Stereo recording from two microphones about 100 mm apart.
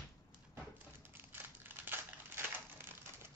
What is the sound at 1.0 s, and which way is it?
Crumpling, 20° right (ahead or behind).